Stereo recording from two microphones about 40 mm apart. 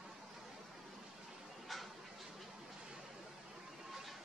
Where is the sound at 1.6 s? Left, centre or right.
Centre.